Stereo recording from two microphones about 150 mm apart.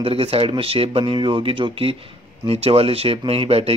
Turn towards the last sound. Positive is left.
turn(degrees=-40)  # may be behind; listen again after turning